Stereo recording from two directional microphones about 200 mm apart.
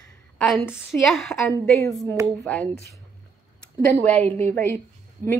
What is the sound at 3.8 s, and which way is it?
Speech, 10° left (ahead or behind).